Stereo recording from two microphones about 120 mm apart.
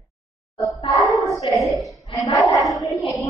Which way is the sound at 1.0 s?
Centre (ahead or behind).